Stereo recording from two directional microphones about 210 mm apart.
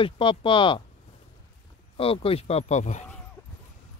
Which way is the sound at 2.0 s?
25° left (ahead or behind).